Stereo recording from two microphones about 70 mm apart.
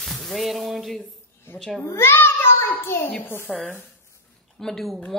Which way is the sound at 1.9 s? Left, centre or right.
Left.